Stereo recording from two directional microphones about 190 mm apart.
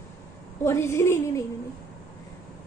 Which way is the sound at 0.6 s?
15° left (ahead or behind).